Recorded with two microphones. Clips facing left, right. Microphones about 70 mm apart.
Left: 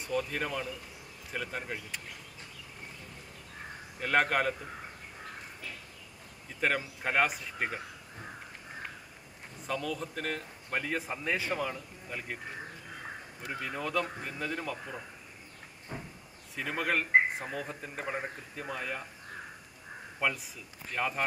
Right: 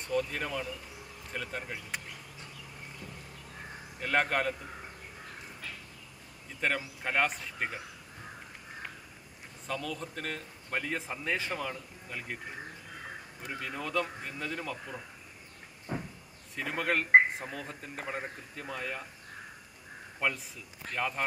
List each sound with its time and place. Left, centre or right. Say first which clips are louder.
0.0 s speech: right 1 dB; centre
4.0 s speech: left 2 dB; centre
6.6 s speech: left 2 dB; centre
9.7 s speech: left 2 dB; centre
13.5 s speech: left 1 dB; centre
16.5 s speech: even; centre
20.9 s speech: left 1 dB; centre